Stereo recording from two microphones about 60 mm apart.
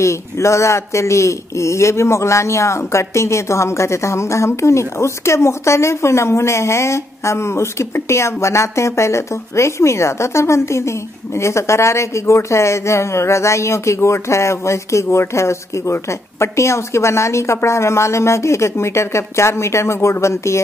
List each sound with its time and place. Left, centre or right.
0.0 s speech: left